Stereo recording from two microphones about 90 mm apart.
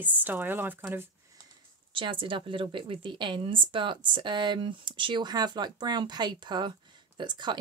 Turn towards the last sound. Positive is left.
turn(degrees=-55)  # may be behind; listen again after turning